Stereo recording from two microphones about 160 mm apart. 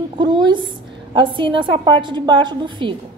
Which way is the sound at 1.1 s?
30° right (ahead or behind).